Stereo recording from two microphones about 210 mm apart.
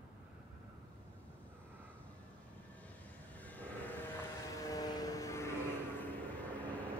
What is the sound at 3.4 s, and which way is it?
Vehicle, 5° left (ahead or behind).